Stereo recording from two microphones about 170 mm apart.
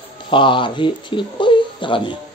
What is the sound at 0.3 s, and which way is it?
Speech, 30° left (ahead or behind).